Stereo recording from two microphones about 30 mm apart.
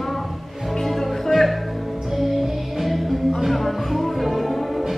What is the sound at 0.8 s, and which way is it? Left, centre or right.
Music, centre.